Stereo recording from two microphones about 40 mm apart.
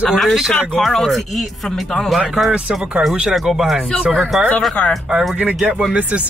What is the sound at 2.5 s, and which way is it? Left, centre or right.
Speech, right.